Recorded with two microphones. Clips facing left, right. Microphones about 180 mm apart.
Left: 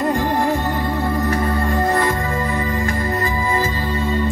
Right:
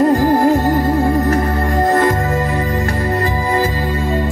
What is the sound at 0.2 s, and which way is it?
Music, 40° right (ahead or behind).